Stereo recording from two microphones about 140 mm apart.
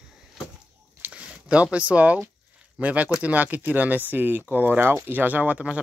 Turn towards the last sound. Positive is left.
turn(degrees=-10)  # may be behind; listen again after turning